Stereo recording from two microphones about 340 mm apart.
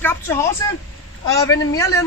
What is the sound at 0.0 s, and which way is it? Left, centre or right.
A man's voice, centre.